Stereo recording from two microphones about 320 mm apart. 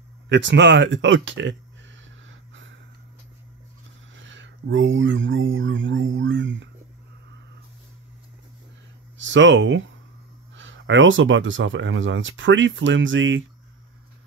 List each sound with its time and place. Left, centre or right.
0.3 s speech: right
2.2 s a sound: right
4.1 s speech: right
9.2 s speech: right